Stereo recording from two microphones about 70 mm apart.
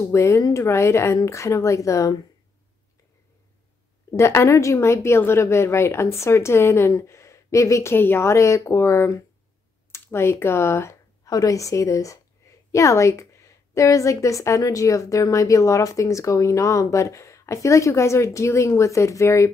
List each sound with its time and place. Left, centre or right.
0.0 s a woman's voice: left
4.1 s a woman's voice: left
11.2 s a woman's voice: left